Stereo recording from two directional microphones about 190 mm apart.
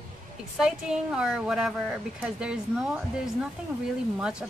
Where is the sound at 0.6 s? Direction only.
5° right (ahead or behind).